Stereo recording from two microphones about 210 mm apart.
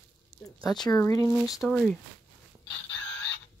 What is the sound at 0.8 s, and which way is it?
Speech, 15° left (ahead or behind).